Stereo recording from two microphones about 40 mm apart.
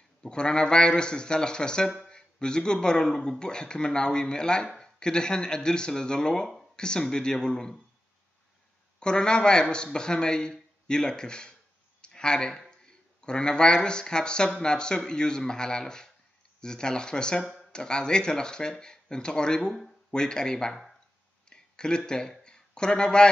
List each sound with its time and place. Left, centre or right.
0.2 s speech: left
9.0 s speech: left
21.5 s a sound: left